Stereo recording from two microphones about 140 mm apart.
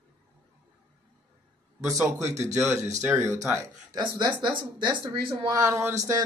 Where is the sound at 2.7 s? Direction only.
20° right (ahead or behind).